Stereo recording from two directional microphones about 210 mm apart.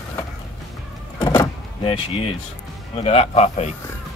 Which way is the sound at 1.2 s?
20° left (ahead or behind).